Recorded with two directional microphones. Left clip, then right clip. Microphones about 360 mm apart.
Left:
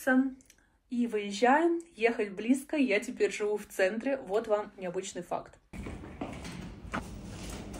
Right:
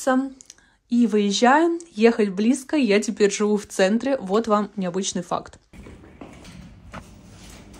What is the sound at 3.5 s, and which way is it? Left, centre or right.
Speech, right.